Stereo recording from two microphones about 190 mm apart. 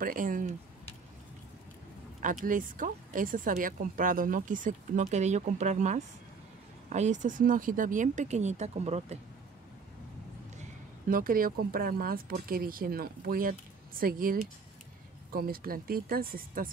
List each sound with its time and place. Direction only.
0.0 s speech: 45° right (ahead or behind)
2.4 s speech: 45° right (ahead or behind)
11.1 s speech: 50° right (ahead or behind)